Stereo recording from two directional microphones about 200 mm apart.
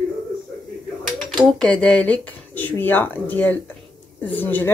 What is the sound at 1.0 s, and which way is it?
A woman's voice, 5° left (ahead or behind).